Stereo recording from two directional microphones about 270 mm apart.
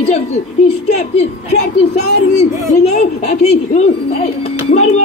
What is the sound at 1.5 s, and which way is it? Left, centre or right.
Speech, left.